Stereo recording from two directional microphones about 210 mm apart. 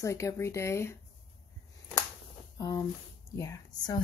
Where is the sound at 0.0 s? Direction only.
15° left (ahead or behind).